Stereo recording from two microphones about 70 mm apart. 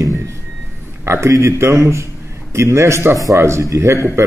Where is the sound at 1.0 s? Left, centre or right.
Right.